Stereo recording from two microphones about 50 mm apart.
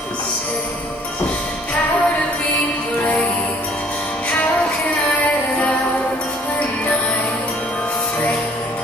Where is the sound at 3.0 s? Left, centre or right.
Left.